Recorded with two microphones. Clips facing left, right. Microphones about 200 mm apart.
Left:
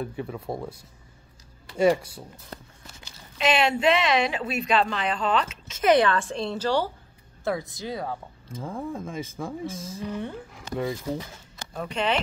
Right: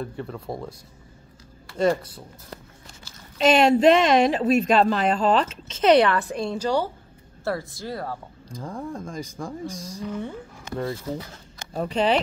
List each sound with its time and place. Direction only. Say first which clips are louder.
0.0 s speech: even; 5° left (ahead or behind)
1.8 s speech: left 1 dB; 10° left (ahead or behind)
3.3 s speech: right 6 dB; 40° right (ahead or behind)
5.9 s a woman's voice: right 3 dB; 20° right (ahead or behind)
6.3 s a woman's voice: right 1 dB; 5° right (ahead or behind)
11.7 s speech: right 5 dB; 35° right (ahead or behind)